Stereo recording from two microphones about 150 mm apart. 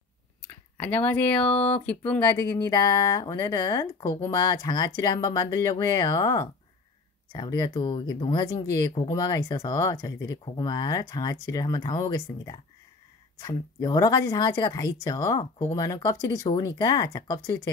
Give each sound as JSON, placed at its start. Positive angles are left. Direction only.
{"t": 0.5, "sound": "speech", "side_deg": 10}
{"t": 2.7, "sound": "speech", "side_deg": 25}